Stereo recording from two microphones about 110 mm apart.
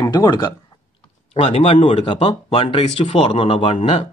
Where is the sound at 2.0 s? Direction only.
50° left (ahead or behind).